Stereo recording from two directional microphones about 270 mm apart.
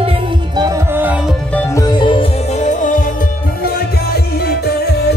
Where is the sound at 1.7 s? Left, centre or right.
Centre.